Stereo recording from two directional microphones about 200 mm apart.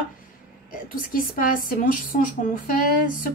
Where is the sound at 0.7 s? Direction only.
45° left (ahead or behind).